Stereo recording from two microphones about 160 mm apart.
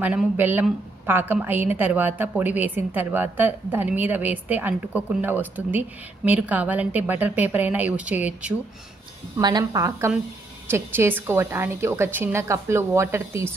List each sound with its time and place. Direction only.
0.0 s a woman's voice: 10° right (ahead or behind)
9.4 s a woman's voice: 25° right (ahead or behind)